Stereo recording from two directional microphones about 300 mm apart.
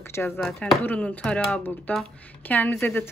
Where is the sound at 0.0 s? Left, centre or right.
Centre.